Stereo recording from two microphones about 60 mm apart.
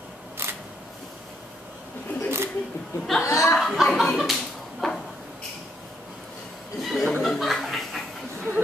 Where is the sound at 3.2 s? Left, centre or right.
Left.